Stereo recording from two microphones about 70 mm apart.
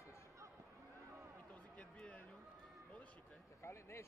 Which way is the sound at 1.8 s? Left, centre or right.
Centre.